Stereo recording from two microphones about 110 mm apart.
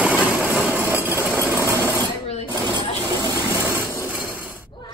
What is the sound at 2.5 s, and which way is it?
Coin, 40° right (ahead or behind).